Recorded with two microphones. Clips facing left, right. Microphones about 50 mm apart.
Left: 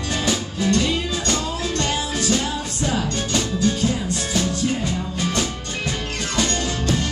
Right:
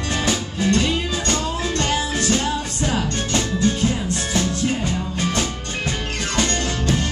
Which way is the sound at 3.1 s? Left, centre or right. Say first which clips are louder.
Right 1 dB; right.